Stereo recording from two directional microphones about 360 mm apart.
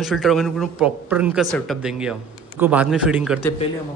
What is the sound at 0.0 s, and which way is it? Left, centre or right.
Speech, centre.